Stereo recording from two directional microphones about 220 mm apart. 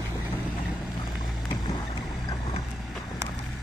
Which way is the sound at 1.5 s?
20° left (ahead or behind).